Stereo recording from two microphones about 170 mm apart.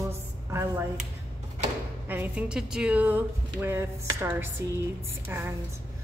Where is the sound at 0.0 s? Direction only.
15° right (ahead or behind).